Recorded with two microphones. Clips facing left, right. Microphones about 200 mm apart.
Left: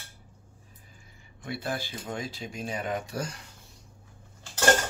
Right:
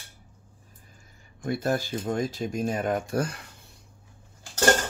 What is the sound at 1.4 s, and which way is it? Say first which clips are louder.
Speech: right 7 dB; 45° right (ahead or behind).